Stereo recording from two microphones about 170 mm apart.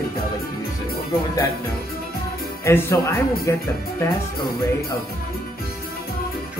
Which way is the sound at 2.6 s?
15° left (ahead or behind).